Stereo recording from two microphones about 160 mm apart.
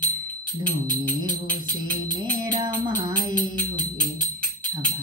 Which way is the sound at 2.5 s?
25° right (ahead or behind).